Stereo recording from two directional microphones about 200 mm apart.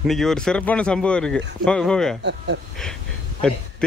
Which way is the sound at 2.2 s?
60° right (ahead or behind).